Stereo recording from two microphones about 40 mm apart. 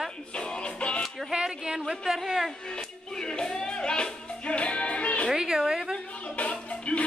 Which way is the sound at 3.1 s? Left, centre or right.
Centre.